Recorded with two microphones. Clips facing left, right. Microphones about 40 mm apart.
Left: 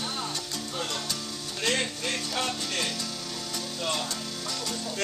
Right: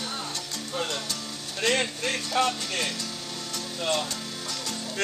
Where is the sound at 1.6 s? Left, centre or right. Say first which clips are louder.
Right 3 dB; centre.